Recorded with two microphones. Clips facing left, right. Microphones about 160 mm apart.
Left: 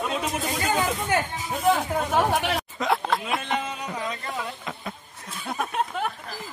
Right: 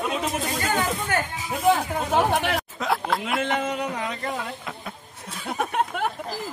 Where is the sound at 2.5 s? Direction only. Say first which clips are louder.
Even; centre (ahead or behind).